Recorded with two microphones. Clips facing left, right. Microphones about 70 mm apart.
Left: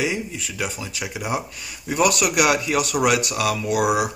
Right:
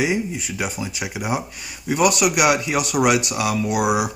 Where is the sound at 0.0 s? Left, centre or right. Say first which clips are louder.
Right 3 dB; centre.